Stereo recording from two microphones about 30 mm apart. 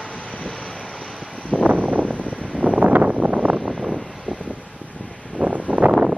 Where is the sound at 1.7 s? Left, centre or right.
Right.